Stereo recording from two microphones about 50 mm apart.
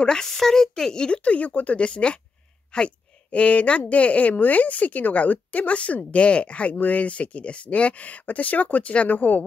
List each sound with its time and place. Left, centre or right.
0.0 s a woman's voice: centre; by 9.4 s left